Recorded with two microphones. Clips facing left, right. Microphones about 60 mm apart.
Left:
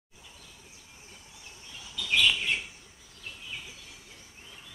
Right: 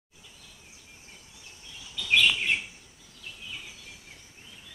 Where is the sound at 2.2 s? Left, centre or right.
Right.